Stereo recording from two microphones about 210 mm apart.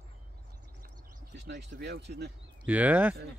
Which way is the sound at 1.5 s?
50° right (ahead or behind).